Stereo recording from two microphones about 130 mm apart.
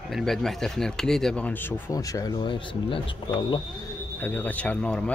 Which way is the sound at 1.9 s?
25° left (ahead or behind).